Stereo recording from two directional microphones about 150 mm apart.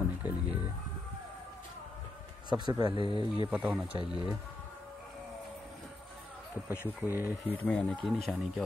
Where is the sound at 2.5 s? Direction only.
30° right (ahead or behind).